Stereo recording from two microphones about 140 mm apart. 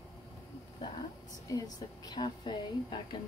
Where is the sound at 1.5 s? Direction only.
25° left (ahead or behind).